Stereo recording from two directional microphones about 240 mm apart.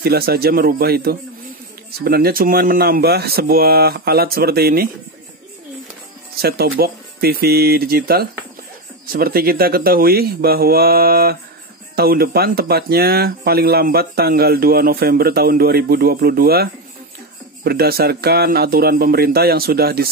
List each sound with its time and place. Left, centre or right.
0.0 s speech: right
6.4 s speech: right